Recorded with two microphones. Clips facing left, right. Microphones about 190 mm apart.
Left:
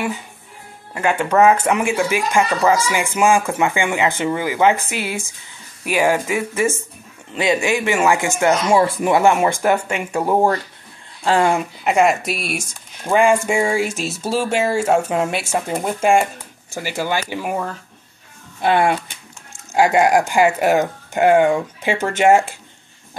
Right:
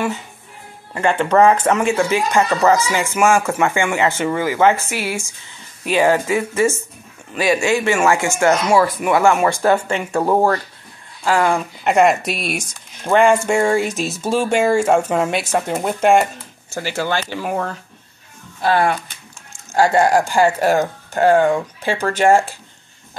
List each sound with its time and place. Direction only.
0.9 s speech: 10° left (ahead or behind)
8.7 s speech: 30° left (ahead or behind); by 10.5 s 15° left (ahead or behind)
11.2 s speech: 25° left (ahead or behind)
11.8 s speech: centre (ahead or behind)
16.7 s speech: 15° left (ahead or behind)